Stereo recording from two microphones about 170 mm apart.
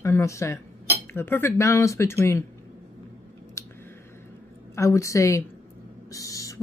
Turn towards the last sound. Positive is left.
turn(degrees=20)  # may be behind; listen again after turning